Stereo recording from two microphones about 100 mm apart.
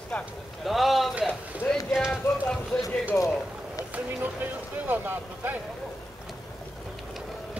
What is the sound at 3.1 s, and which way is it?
Run, 35° left (ahead or behind).